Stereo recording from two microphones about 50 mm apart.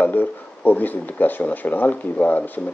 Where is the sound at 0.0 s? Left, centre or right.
Left.